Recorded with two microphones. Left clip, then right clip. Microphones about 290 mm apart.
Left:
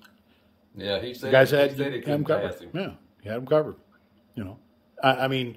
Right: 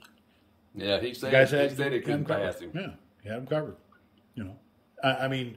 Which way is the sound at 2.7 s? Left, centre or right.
Centre.